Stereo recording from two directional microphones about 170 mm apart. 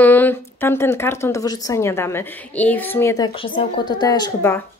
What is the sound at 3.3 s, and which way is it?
Speech, 30° left (ahead or behind).